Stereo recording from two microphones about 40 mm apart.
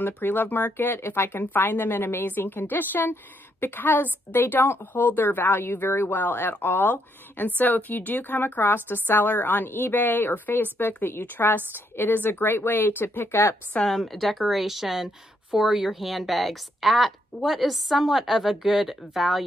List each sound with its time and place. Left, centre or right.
0.0 s speech: left
0.7 s speech: left
1.5 s speech: left
13.8 s speech: centre